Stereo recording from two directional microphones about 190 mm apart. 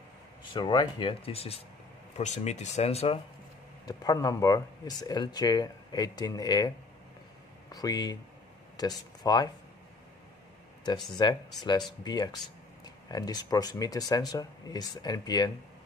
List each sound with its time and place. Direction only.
0.5 s speech: 25° left (ahead or behind)
3.8 s speech: 20° left (ahead or behind)
7.7 s speech: 20° left (ahead or behind)
11.1 s speech: 25° left (ahead or behind)